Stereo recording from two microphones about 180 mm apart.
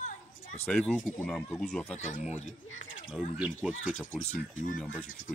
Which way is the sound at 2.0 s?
40° left (ahead or behind).